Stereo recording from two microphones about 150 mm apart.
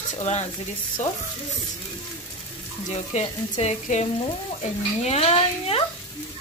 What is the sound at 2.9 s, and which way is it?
Speech, 50° left (ahead or behind).